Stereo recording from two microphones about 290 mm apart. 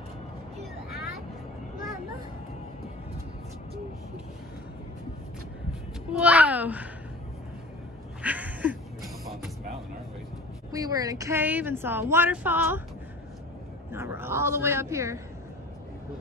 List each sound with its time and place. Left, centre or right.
6.1 s a sound: centre
8.2 s music: centre
10.7 s speech: centre
13.9 s speech: centre